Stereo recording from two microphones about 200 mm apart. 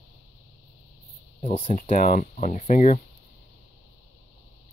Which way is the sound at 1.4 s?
35° left (ahead or behind).